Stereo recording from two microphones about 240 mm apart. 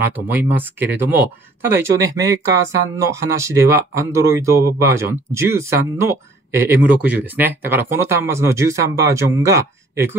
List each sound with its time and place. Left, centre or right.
0.1 s speech: centre